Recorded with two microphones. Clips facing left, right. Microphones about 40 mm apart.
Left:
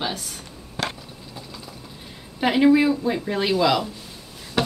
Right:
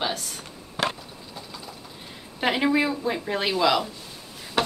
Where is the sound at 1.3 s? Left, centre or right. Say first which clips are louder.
Even; centre.